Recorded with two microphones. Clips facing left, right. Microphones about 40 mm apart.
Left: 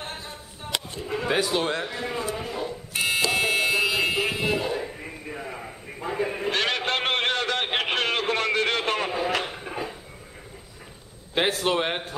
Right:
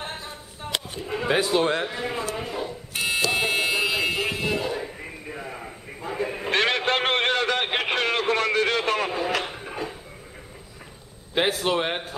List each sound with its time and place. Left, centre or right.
0.0 s a sound: centre
1.6 s a man's voice: centre
2.3 s buzzer: centre
5.9 s sheep: centre
6.5 s a sound: right; by 9.9 s centre
11.3 s a man's voice: centre